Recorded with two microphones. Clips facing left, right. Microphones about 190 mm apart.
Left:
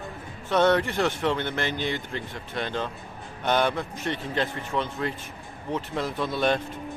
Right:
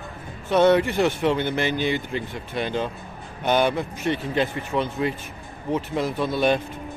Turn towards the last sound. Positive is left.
turn(degrees=-5)  # may be behind; listen again after turning